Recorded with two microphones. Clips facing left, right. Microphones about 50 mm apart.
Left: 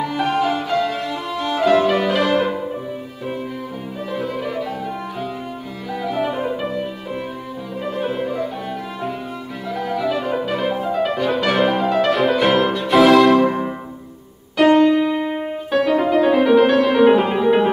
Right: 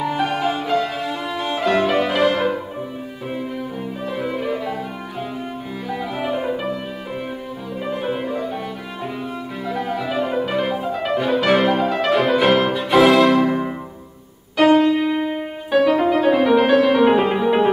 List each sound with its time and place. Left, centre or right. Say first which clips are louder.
0.0 s music: left 1 dB; centre
4.1 s violin: even; centre
5.9 s music: left 2 dB; centre
7.8 s music: left 1 dB; centre
9.8 s music: left 2 dB; centre
12.9 s violin: left 2 dB; centre
13.5 s music: right 1 dB; centre